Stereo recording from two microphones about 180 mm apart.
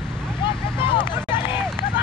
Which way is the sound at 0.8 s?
25° left (ahead or behind).